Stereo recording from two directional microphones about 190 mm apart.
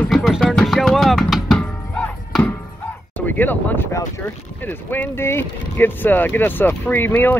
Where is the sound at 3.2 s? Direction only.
10° left (ahead or behind).